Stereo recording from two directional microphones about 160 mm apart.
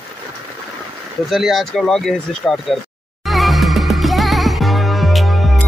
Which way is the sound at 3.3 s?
Centre (ahead or behind).